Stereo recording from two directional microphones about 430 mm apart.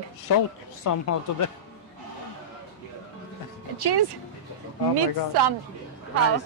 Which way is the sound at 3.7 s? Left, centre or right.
Right.